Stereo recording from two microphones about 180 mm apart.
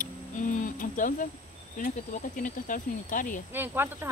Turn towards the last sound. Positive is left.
turn(degrees=-10)  # may be behind; listen again after turning